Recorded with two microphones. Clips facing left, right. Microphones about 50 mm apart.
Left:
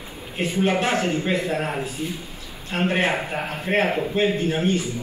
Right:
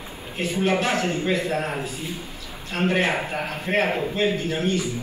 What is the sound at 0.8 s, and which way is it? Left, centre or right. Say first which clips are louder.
A man's voice: left 1 dB; left.